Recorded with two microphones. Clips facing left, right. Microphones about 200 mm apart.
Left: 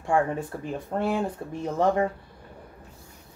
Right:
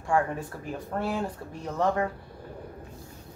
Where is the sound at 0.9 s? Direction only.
25° left (ahead or behind).